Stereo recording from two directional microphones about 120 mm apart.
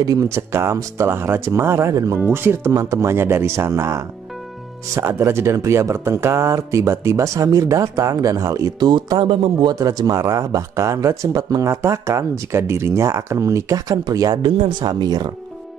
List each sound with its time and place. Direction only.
0.0 s speech: 30° right (ahead or behind); by 9.8 s 45° right (ahead or behind)
9.8 s speech: 30° right (ahead or behind)